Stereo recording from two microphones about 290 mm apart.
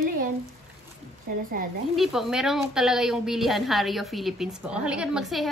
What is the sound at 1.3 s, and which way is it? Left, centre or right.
Speech, right.